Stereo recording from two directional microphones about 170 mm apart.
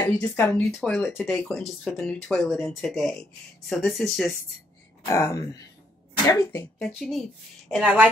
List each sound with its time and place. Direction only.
0.0 s speech: 10° left (ahead or behind)
5.0 s speech: 15° left (ahead or behind)
7.0 s speech: centre (ahead or behind)